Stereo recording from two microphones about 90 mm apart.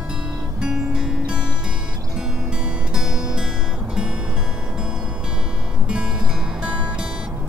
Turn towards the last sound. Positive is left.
turn(degrees=-10)  # may be behind; listen again after turning